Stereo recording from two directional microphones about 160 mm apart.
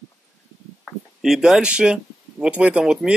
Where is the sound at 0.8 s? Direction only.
Centre (ahead or behind).